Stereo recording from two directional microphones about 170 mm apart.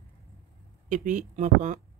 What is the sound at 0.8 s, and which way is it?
Speech, 50° right (ahead or behind).